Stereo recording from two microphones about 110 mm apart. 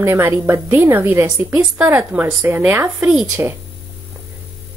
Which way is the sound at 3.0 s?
5° right (ahead or behind).